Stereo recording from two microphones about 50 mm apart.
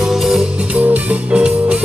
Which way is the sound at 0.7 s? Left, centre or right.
Right.